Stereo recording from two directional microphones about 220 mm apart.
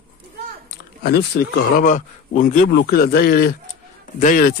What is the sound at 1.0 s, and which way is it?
Speech, 45° left (ahead or behind).